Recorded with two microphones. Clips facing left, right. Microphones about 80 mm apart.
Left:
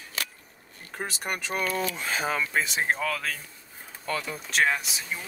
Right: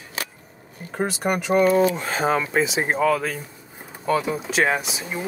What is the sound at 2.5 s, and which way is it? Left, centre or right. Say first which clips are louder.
Speech: right 5 dB; centre.